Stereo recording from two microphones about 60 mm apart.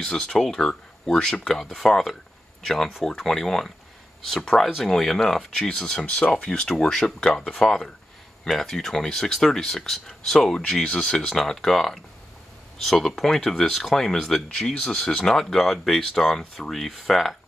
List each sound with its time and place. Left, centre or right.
0.0 s speech: centre
6.0 s speech: left; by 17.4 s centre